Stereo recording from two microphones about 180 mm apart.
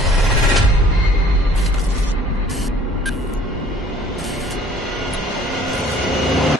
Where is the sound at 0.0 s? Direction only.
Centre (ahead or behind).